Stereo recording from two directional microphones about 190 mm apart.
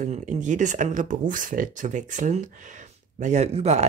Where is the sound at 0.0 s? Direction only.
40° right (ahead or behind).